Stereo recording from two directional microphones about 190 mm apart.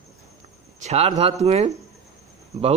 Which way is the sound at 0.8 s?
35° right (ahead or behind).